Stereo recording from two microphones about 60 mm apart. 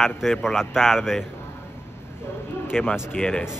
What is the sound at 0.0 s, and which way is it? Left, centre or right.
Speech, centre.